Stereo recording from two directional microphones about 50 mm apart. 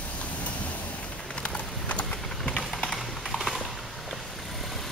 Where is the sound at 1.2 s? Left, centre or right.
Centre.